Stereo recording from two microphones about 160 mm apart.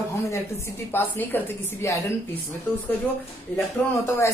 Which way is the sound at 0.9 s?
15° left (ahead or behind).